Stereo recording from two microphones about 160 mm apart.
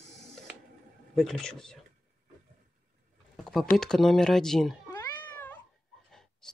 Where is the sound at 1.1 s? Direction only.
5° left (ahead or behind).